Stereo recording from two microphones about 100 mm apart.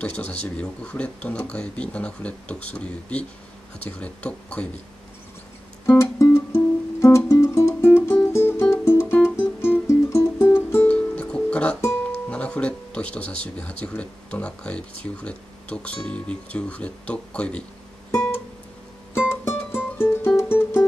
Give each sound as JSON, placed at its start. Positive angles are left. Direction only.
{"t": 0.0, "sound": "speech", "side_deg": 15}
{"t": 5.9, "sound": "music", "side_deg": 30}
{"t": 10.9, "sound": "music", "side_deg": 10}
{"t": 12.3, "sound": "speech", "side_deg": 10}
{"t": 18.1, "sound": "music", "side_deg": 30}